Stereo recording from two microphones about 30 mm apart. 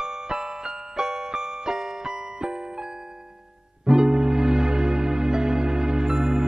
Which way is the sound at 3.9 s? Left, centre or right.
Right.